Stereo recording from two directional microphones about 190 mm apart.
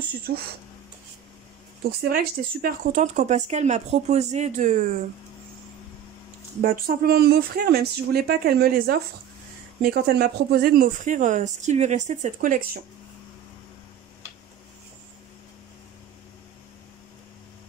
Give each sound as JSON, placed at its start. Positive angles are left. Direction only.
{"t": 1.9, "sound": "speech", "side_deg": -50}
{"t": 6.6, "sound": "speech", "side_deg": -50}